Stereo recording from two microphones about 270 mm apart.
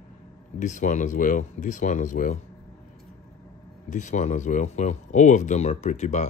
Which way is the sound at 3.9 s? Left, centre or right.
Left.